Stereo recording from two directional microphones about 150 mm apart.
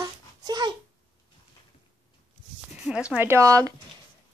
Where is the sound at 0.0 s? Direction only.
25° right (ahead or behind).